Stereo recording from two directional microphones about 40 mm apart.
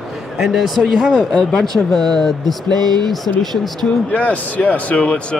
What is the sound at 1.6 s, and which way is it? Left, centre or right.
Speech, centre.